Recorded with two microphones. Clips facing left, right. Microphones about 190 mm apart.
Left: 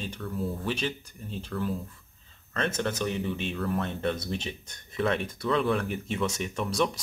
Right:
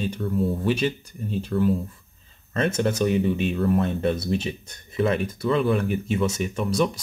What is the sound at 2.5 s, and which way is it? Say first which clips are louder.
Speech: right 7 dB; 10° right (ahead or behind).